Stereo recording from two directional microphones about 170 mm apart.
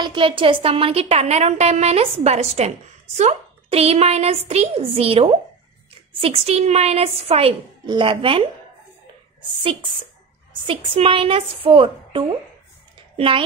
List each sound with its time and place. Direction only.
0.0 s a woman's voice: 30° right (ahead or behind)
9.6 s a woman's voice: 30° right (ahead or behind)